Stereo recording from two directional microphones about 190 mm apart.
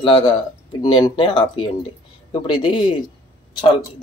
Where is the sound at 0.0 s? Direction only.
25° left (ahead or behind).